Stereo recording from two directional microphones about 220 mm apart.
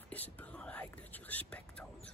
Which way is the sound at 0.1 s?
5° left (ahead or behind).